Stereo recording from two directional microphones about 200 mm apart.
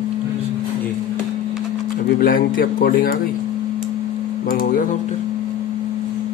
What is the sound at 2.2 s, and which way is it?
Speech, 45° left (ahead or behind).